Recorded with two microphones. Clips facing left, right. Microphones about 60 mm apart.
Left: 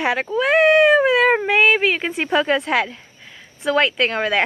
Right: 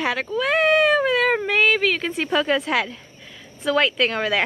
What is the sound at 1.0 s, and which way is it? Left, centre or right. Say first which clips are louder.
Speech: left 4 dB; left.